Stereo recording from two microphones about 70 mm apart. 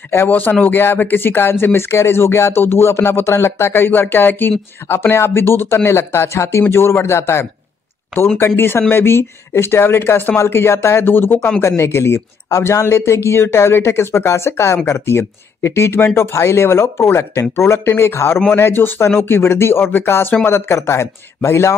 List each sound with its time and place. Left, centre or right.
0.3 s speech: left
8.5 s speech: left